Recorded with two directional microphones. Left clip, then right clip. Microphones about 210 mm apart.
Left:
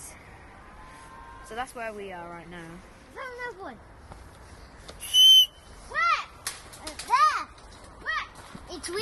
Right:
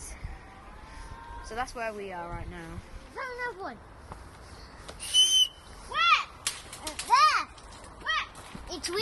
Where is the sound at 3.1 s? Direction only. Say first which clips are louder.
Right 2 dB; 15° left (ahead or behind).